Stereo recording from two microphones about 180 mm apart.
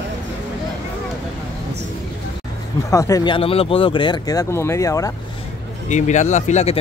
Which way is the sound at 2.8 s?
20° left (ahead or behind).